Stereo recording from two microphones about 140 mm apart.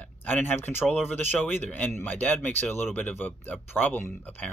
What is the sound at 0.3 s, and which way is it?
Speech, 15° left (ahead or behind).